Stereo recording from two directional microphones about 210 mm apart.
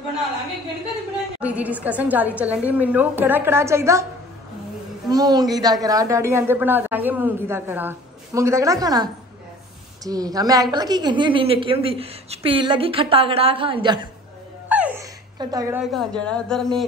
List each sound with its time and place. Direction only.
1.4 s a man's voice: 5° right (ahead or behind)
5.1 s a man's voice: 20° right (ahead or behind)
14.7 s a sound: 10° right (ahead or behind)
15.3 s a man's voice: 15° right (ahead or behind)
15.8 s speech: centre (ahead or behind)